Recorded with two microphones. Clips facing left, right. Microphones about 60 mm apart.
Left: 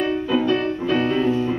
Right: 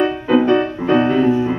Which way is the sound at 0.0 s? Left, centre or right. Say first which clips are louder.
Right 5 dB; right.